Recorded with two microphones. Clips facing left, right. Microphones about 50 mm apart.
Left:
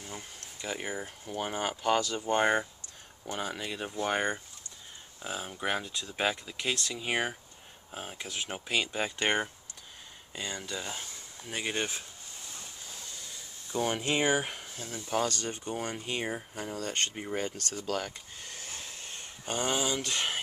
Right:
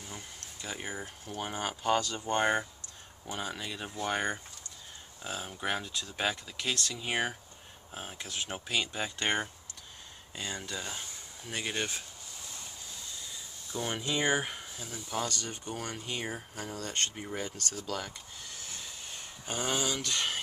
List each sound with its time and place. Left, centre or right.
0.0 s speech: centre
10.3 s speech: centre
13.7 s speech: left
14.1 s speech: centre
15.0 s speech: left
15.6 s speech: left
16.3 s speech: centre
16.7 s speech: left
17.8 s a sound: left
19.4 s speech: centre